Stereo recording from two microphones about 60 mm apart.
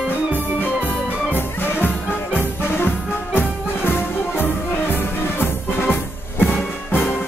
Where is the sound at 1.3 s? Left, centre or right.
Left.